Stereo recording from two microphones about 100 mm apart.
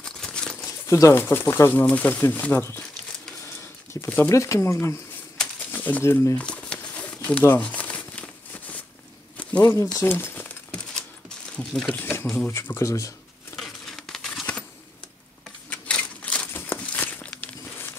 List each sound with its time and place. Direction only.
0.0 s crumpling: 10° left (ahead or behind)
0.7 s speech: 30° left (ahead or behind)
3.9 s speech: 25° left (ahead or behind)
5.7 s speech: 15° left (ahead or behind)
6.3 s crumpling: 10° left (ahead or behind)
9.4 s a sound: 15° left (ahead or behind)
10.0 s speech: 20° left (ahead or behind)
10.4 s a sound: 10° left (ahead or behind)
12.0 s speech: 20° left (ahead or behind)
13.6 s crumpling: 5° left (ahead or behind)
15.7 s crumpling: 10° left (ahead or behind)